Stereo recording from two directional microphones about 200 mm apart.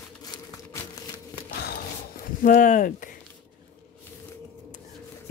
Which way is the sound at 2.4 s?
40° left (ahead or behind).